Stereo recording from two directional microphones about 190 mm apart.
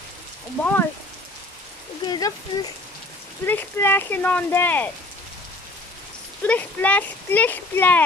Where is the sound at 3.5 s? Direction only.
10° left (ahead or behind).